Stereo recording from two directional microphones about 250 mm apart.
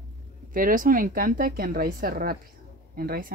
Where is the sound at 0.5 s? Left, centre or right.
Right.